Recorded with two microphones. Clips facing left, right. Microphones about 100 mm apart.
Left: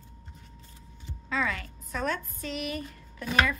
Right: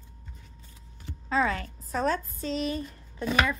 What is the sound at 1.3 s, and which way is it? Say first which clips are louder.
Speech: right 4 dB; 35° right (ahead or behind).